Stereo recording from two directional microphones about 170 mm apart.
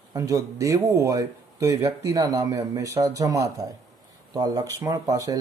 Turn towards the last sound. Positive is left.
turn(degrees=-20)  # may be behind; listen again after turning